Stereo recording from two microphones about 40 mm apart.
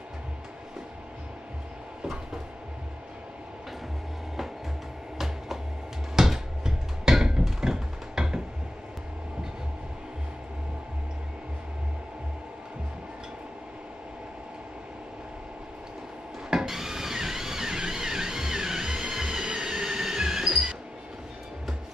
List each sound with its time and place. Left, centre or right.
6.1 s a sound: centre
7.6 s music: centre
16.4 s music: centre